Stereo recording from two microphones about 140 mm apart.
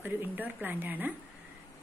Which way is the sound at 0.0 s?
10° right (ahead or behind).